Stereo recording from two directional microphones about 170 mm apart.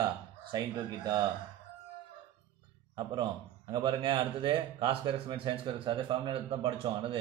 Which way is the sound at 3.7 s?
30° right (ahead or behind).